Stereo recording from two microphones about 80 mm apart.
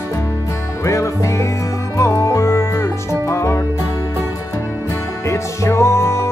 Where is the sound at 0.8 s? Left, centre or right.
Left.